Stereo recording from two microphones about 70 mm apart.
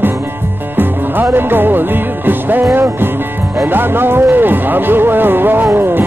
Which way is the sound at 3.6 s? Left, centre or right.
Right.